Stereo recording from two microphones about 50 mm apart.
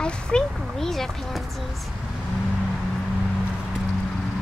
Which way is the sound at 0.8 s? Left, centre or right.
Centre.